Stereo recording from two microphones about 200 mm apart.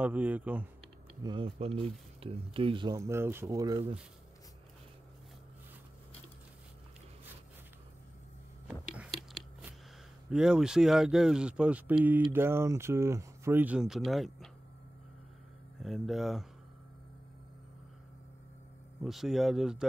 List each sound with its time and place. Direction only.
0.0 s speech: 5° right (ahead or behind)
1.2 s speech: 25° right (ahead or behind)
8.6 s biting: 5° right (ahead or behind)
10.3 s speech: 5° right (ahead or behind)
15.8 s speech: centre (ahead or behind)
19.0 s speech: centre (ahead or behind)